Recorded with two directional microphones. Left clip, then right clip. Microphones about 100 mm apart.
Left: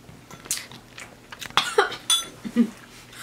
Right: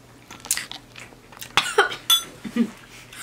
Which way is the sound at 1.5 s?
10° right (ahead or behind).